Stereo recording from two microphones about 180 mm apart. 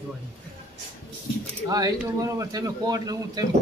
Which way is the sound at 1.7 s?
20° right (ahead or behind).